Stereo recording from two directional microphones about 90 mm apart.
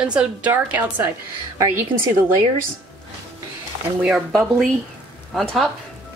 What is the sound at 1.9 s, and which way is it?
Speech, 65° right (ahead or behind).